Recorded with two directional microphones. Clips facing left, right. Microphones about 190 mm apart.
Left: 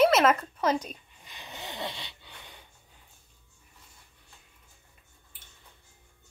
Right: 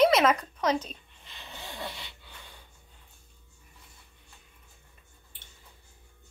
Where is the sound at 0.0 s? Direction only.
5° left (ahead or behind); by 2.0 s 20° left (ahead or behind).